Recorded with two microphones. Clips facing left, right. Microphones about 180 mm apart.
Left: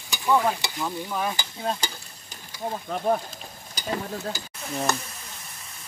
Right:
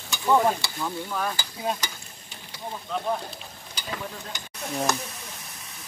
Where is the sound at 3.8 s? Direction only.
35° left (ahead or behind).